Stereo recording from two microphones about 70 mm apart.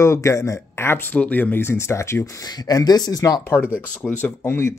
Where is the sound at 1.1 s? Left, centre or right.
Left.